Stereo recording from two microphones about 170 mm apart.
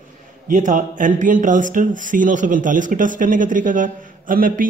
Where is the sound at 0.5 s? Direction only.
50° right (ahead or behind).